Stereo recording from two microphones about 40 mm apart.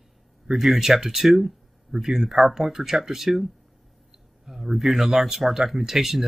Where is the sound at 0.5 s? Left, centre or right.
Centre.